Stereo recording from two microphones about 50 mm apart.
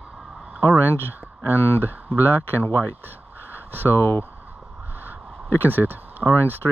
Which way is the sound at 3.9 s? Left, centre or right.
Left.